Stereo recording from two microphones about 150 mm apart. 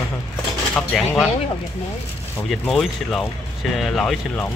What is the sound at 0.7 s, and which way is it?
Speech, centre (ahead or behind).